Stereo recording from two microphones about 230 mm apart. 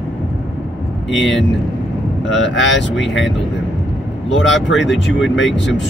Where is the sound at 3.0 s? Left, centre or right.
Centre.